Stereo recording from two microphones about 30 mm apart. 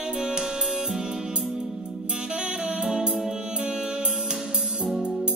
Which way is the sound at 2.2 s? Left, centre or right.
Right.